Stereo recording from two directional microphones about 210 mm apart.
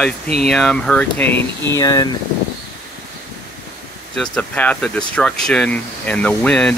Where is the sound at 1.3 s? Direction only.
60° left (ahead or behind).